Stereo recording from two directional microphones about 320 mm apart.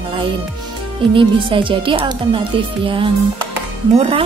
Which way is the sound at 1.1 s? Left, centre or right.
Centre.